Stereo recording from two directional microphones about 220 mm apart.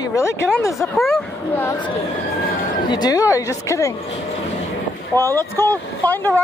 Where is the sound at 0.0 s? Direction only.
15° left (ahead or behind).